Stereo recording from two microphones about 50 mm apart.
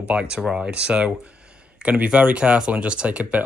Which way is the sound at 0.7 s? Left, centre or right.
Right.